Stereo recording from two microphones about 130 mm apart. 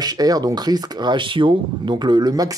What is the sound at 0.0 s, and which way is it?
Speech, 30° right (ahead or behind).